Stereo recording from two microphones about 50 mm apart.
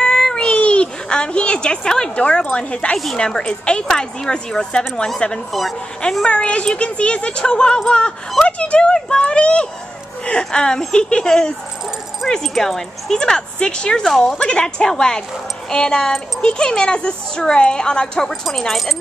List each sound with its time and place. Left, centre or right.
0.0 s cat: centre
3.2 s speech: centre
5.5 s speech: centre
6.2 s speech: left; by 14.4 s centre
14.4 s speech: centre
18.7 s speech: centre